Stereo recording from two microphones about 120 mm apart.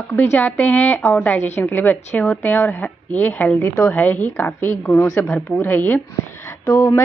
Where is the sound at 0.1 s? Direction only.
15° left (ahead or behind).